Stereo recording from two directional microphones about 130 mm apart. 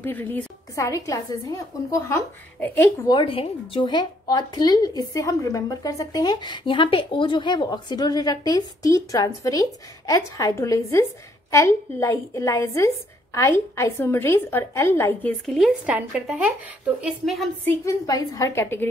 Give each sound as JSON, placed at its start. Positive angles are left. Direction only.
{"t": 0.0, "sound": "a woman's voice", "side_deg": 15}
{"t": 0.7, "sound": "a woman's voice", "side_deg": 25}
{"t": 3.1, "sound": "a woman's voice", "side_deg": 40}
{"t": 15.4, "sound": "speech", "side_deg": 0}
{"t": 15.8, "sound": "speech", "side_deg": -10}
{"t": 17.2, "sound": "speech", "side_deg": 0}
{"t": 17.6, "sound": "a woman's voice", "side_deg": 25}